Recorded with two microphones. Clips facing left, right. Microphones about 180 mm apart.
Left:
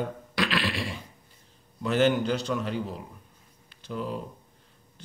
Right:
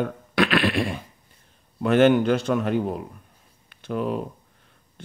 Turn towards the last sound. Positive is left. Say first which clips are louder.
# right 7 dB
turn(degrees=-65)  # may be behind; listen again after turning